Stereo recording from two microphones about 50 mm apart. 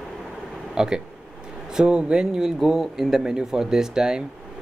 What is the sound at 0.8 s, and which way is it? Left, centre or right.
Speech, centre.